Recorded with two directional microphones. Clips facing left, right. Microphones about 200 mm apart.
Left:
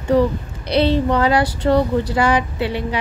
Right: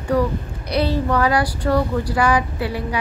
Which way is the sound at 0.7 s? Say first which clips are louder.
Left 3 dB; 25° left (ahead or behind).